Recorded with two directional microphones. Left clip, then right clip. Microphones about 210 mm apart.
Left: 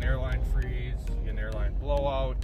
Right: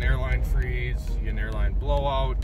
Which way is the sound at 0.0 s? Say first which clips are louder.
Right 4 dB; centre (ahead or behind).